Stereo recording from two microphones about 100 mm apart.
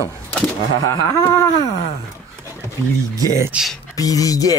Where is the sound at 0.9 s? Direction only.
35° left (ahead or behind).